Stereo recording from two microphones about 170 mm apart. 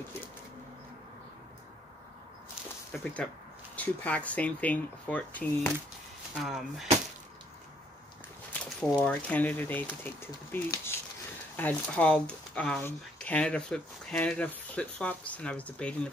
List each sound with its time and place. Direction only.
2.9 s speech: 5° left (ahead or behind)
6.4 s speech: centre (ahead or behind)
8.6 s speech: 5° left (ahead or behind)